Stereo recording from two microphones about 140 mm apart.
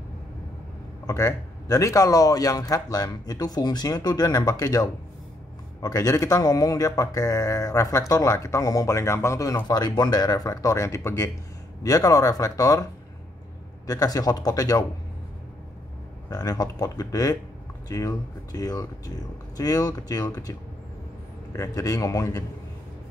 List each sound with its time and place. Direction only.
1.0 s speech: 25° left (ahead or behind)
13.8 s speech: 25° left (ahead or behind)
16.3 s speech: 25° left (ahead or behind)
21.5 s speech: 25° left (ahead or behind)